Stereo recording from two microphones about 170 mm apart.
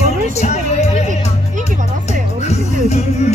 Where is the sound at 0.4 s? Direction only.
40° left (ahead or behind).